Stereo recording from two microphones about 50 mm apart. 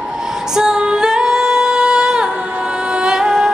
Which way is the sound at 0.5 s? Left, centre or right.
Centre.